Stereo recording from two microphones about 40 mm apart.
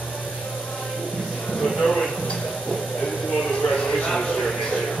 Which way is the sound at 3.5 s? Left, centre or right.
Left.